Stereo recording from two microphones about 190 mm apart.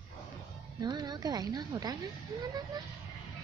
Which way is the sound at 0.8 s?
20° right (ahead or behind).